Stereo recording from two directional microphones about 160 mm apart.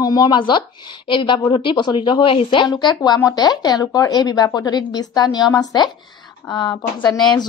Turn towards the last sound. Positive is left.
turn(degrees=25)  # may be behind; listen again after turning